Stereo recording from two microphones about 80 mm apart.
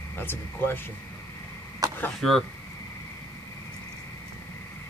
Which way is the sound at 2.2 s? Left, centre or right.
Centre.